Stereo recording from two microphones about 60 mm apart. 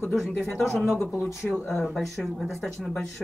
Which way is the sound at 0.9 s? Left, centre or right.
Left.